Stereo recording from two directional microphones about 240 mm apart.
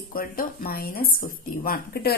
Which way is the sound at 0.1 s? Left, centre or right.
Left.